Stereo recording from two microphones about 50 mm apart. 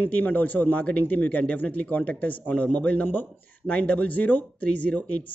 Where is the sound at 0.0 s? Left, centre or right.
Left.